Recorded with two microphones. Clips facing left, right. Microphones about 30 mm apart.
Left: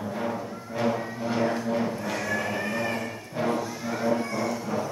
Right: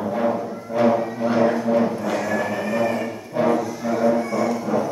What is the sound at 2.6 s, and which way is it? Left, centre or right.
Music, centre.